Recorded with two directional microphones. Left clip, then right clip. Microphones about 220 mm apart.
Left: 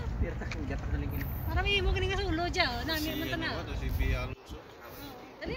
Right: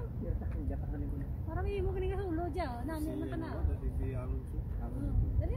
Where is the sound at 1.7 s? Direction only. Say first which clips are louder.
Left 5 dB; 30° right (ahead or behind).